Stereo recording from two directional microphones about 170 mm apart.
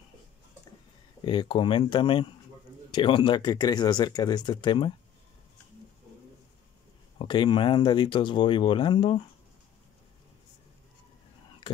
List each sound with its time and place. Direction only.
1.2 s speech: 30° left (ahead or behind)
7.2 s speech: 25° left (ahead or behind)